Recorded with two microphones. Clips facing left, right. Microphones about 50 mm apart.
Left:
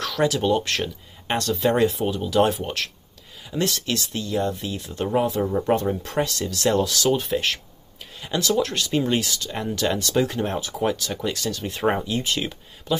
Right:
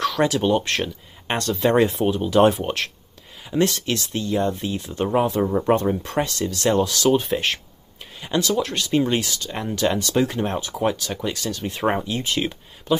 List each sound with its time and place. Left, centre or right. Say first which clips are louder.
0.0 s speech: right 2 dB; centre
2.0 s speech: right 4 dB; right; by 7.2 s centre
7.2 s speech: right 2 dB; centre